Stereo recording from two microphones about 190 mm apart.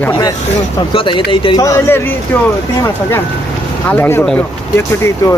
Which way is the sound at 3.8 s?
10° left (ahead or behind).